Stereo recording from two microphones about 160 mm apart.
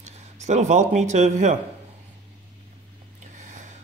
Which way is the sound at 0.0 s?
45° right (ahead or behind).